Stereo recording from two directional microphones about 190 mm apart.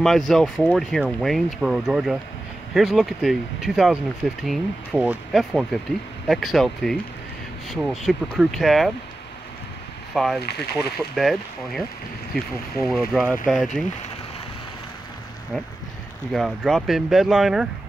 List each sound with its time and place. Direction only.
0.0 s speech: centre (ahead or behind)
10.1 s speech: centre (ahead or behind)
12.8 s speech: 5° right (ahead or behind)
16.3 s speech: centre (ahead or behind)